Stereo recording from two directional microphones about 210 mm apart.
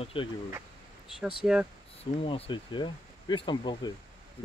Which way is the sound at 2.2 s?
25° left (ahead or behind).